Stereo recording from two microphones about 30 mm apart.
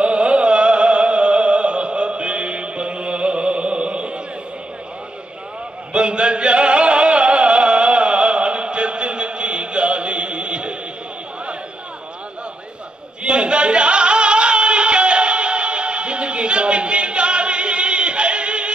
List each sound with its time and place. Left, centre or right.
0.0 s music: right
5.9 s music: right
13.2 s music: right